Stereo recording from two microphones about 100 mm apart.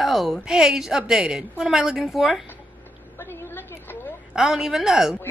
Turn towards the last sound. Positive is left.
turn(degrees=-5)  # may be behind; listen again after turning